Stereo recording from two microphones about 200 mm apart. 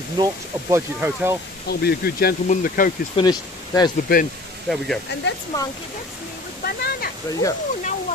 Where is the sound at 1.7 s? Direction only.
55° left (ahead or behind).